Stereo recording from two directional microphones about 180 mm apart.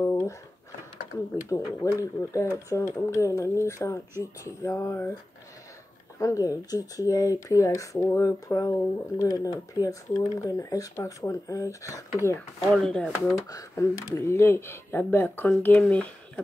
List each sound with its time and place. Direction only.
0.0 s a sound: 15° left (ahead or behind)
1.5 s speech: 15° left (ahead or behind)
6.1 s speech: 15° left (ahead or behind)
12.6 s speech: centre (ahead or behind)
13.5 s speech: 20° left (ahead or behind)